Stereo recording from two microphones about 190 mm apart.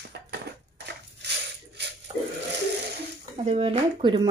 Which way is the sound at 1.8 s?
60° right (ahead or behind).